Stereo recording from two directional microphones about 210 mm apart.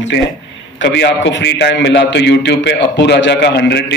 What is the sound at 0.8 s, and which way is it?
A man's voice, 55° left (ahead or behind).